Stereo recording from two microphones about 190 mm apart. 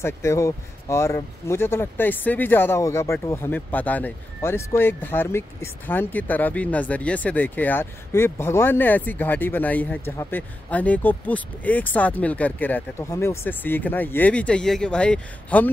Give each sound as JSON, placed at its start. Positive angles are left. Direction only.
{"t": 0.0, "sound": "speech", "side_deg": 15}